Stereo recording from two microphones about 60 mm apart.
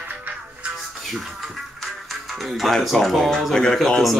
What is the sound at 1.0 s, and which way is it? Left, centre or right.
Music, centre.